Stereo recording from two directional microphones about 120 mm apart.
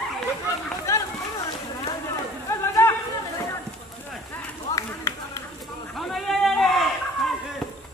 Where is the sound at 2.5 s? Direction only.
25° left (ahead or behind).